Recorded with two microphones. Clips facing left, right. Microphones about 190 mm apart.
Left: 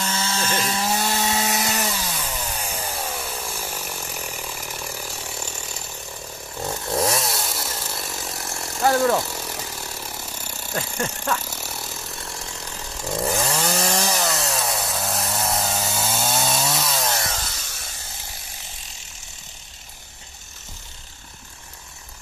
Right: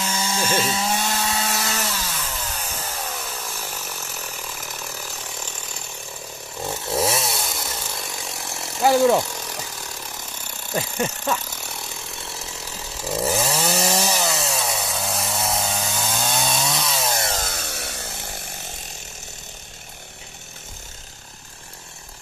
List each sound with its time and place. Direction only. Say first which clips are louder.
0.0 s chainsaw: right 1 dB; 10° right (ahead or behind); by 1.1 s 5° left (ahead or behind)
1.1 s chainsaw: left 2 dB; 20° left (ahead or behind)
6.6 s chainsaw: even; centre (ahead or behind)
8.9 s speech: right 4 dB; 10° right (ahead or behind)
9.3 s chainsaw: left 1 dB; 5° left (ahead or behind)
10.7 s speech: right 3 dB; 10° right (ahead or behind)
11.4 s chainsaw: left 1 dB; 5° left (ahead or behind)
17.3 s chainsaw: right 5 dB; 50° right (ahead or behind)